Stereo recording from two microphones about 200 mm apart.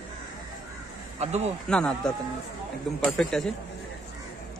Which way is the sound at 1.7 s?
5° left (ahead or behind).